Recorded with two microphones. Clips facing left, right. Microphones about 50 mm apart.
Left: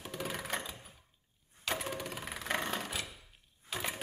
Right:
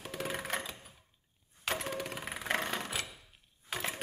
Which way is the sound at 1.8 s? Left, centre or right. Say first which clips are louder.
Right 1 dB; centre.